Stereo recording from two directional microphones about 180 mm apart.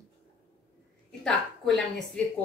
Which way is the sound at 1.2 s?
Centre (ahead or behind).